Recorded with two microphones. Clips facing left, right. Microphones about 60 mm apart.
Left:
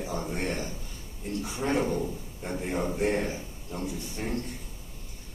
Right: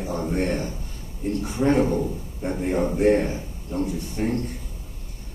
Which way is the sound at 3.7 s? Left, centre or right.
Right.